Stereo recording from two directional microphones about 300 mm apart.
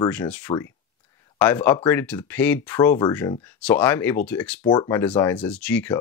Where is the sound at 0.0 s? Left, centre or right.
Centre.